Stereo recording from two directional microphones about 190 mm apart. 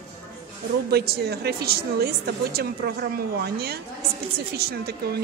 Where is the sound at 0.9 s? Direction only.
55° right (ahead or behind).